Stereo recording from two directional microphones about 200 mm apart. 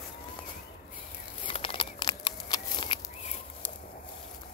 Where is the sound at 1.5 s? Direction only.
25° left (ahead or behind).